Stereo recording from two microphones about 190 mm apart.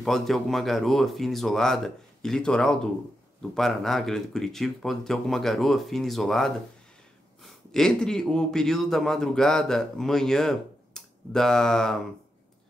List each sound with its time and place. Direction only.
0.0 s a man's voice: centre (ahead or behind)